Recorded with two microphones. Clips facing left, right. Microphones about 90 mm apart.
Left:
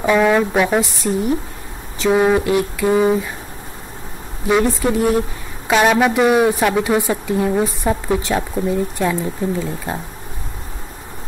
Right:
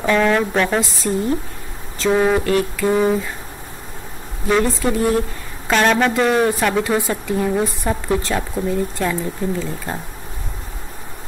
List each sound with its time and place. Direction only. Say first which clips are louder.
0.0 s a woman's voice: left 2 dB; 10° left (ahead or behind)
4.5 s a woman's voice: left 2 dB; 10° left (ahead or behind)